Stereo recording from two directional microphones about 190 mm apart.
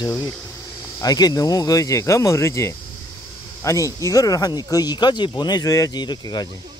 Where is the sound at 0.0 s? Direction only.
20° left (ahead or behind).